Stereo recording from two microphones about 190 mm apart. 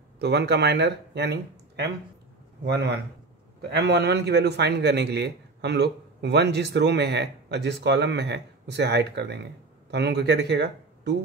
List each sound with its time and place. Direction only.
0.2 s a man's voice: 65° right (ahead or behind)